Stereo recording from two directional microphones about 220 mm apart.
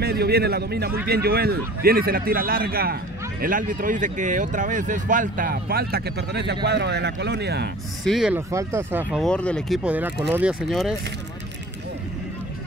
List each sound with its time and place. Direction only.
0.0 s a man's voice: 45° right (ahead or behind)
8.0 s speech: centre (ahead or behind)
9.2 s speech: 5° left (ahead or behind)